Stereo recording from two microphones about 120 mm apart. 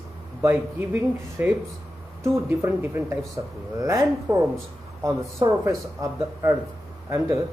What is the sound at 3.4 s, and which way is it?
Speech, 30° right (ahead or behind).